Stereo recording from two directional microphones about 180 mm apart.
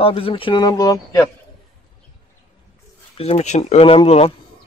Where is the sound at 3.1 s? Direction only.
35° left (ahead or behind).